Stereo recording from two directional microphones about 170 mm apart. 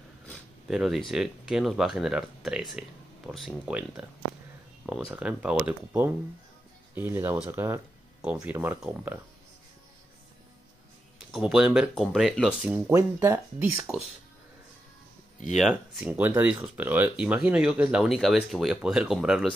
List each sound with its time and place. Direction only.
0.3 s speech: centre (ahead or behind)
11.1 s speech: centre (ahead or behind)
12.7 s speech: 15° right (ahead or behind)
15.4 s speech: centre (ahead or behind)